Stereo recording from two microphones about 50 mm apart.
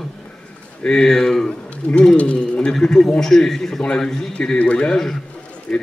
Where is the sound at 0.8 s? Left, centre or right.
Centre.